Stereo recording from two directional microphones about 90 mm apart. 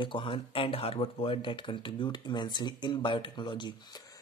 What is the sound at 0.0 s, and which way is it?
Speech, 70° left (ahead or behind).